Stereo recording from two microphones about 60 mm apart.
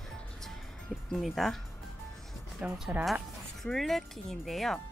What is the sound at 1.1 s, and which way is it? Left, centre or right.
Speech, centre.